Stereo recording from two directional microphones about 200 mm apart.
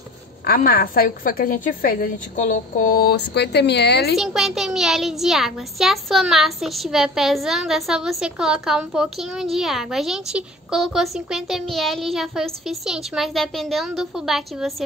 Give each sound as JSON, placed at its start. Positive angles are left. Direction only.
{"t": 0.5, "sound": "a woman's voice", "side_deg": 50}
{"t": 4.1, "sound": "a child's voice", "side_deg": 0}